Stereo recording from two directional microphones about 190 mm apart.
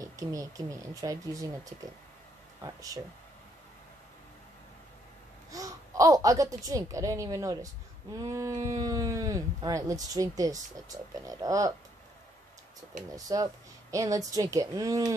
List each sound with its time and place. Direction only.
0.0 s speech: 20° right (ahead or behind)
5.5 s speech: 20° right (ahead or behind)
13.1 s speech: 20° right (ahead or behind)